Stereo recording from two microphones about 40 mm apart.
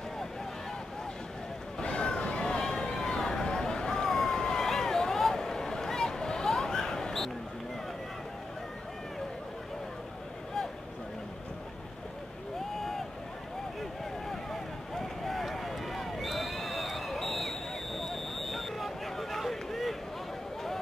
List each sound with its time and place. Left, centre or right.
1.8 s vehicle: left
3.1 s a sound: centre
14.3 s run: centre